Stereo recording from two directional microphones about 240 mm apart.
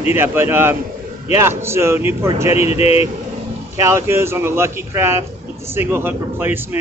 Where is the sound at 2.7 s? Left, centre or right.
Left.